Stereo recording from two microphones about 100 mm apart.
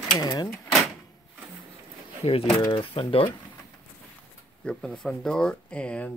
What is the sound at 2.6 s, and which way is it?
Speech, 55° left (ahead or behind).